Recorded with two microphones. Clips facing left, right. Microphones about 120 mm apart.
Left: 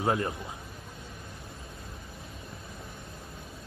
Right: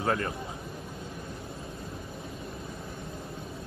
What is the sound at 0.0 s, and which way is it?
Speech, 20° left (ahead or behind).